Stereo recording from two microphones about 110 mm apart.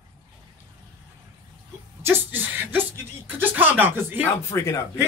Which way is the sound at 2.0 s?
20° right (ahead or behind).